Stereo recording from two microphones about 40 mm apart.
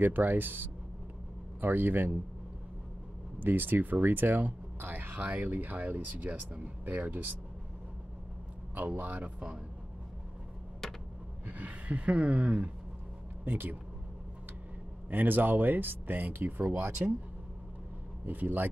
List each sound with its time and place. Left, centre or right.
0.0 s speech: right
3.4 s speech: right
8.7 s speech: right
10.8 s a sound: centre
11.4 s speech: right
13.5 s speech: right
15.0 s speech: right
18.2 s speech: right